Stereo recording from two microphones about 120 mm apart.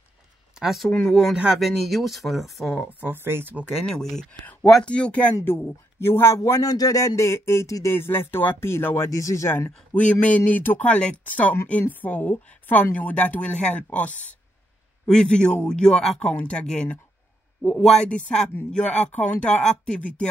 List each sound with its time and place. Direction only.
0.6 s speech: centre (ahead or behind)
2.9 s speech: 15° right (ahead or behind)
3.7 s speech: 5° left (ahead or behind); by 9.7 s 25° left (ahead or behind)
9.9 s a sound: 10° left (ahead or behind)
10.5 s a woman's voice: 15° left (ahead or behind)
15.0 s a woman's voice: 5° left (ahead or behind)